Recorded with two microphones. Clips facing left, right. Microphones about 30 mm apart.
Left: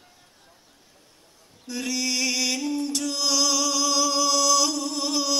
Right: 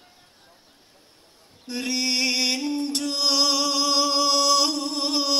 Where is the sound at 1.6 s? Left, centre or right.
Right.